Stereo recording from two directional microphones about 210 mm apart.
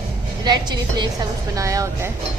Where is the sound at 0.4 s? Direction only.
20° right (ahead or behind).